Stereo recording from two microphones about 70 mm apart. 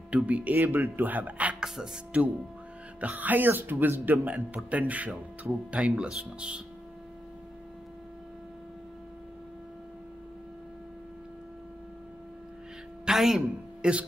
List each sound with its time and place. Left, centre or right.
0.1 s speech: right
3.0 s speech: right
13.0 s a sound: centre
13.8 s speech: centre